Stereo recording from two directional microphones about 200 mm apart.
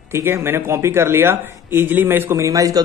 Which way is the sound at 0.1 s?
10° right (ahead or behind).